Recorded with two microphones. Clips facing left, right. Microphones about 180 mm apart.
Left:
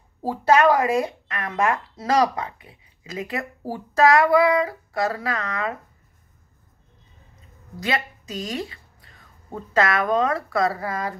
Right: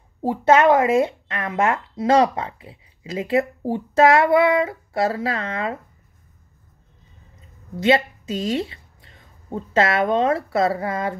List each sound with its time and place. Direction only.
0.2 s speech: 20° right (ahead or behind)
7.8 s a woman's voice: 25° right (ahead or behind)